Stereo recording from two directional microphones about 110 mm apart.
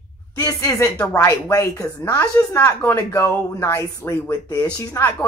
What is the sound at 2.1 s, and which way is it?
A woman's voice, 15° left (ahead or behind).